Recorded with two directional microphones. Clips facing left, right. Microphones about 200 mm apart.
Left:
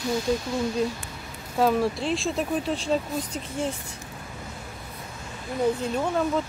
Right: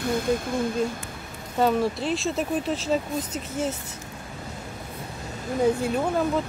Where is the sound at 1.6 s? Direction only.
Centre (ahead or behind).